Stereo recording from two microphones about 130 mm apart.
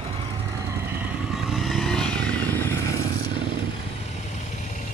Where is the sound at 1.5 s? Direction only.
Centre (ahead or behind).